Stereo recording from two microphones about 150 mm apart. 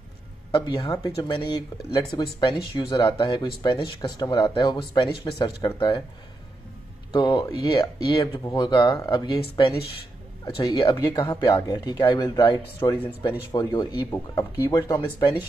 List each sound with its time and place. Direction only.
0.5 s speech: 30° left (ahead or behind)
7.1 s speech: 30° left (ahead or behind)
10.8 s speech: 30° left (ahead or behind)